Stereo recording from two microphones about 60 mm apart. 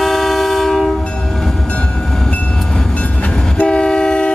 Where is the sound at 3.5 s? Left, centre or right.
Centre.